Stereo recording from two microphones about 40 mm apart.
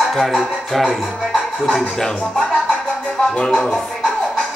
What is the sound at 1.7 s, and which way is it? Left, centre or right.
Speech, centre.